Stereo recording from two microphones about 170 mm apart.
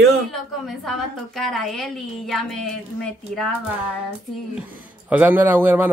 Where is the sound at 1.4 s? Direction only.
Centre (ahead or behind).